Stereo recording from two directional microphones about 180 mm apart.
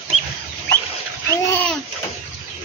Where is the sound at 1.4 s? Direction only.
10° left (ahead or behind).